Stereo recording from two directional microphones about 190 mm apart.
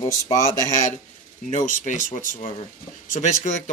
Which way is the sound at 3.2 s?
30° left (ahead or behind).